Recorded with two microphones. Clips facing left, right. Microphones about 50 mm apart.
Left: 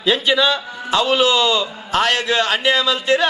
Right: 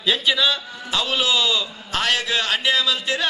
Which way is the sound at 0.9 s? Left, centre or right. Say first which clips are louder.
Left 7 dB; centre.